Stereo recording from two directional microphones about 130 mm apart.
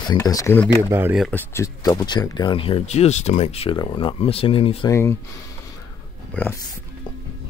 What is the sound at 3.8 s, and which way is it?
Speech, 40° left (ahead or behind).